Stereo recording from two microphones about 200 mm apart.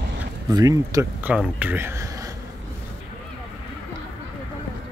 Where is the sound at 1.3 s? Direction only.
5° right (ahead or behind).